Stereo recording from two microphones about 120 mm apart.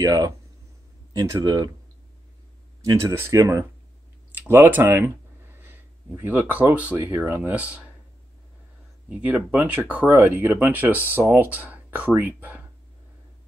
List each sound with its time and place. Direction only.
0.0 s speech: 30° right (ahead or behind)
1.4 s speech: 35° right (ahead or behind)
2.8 s speech: 30° right (ahead or behind); by 7.8 s 10° right (ahead or behind)
9.1 s speech: 15° right (ahead or behind)